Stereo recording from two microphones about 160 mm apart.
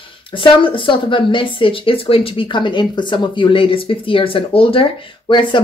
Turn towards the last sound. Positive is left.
turn(degrees=30)  # may be behind; listen again after turning